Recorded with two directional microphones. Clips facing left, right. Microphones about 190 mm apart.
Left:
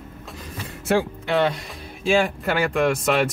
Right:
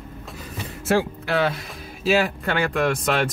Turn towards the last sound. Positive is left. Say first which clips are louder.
# left 2 dB
turn(degrees=0)  # may be behind; listen again after turning